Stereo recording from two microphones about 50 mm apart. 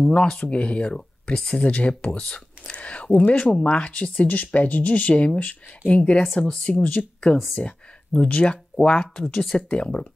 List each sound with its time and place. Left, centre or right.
0.0 s speech: centre
7.3 s speech: centre
7.6 s speech: left